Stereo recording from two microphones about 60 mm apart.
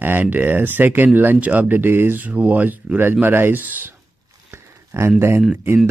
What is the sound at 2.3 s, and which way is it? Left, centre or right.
Speech, right.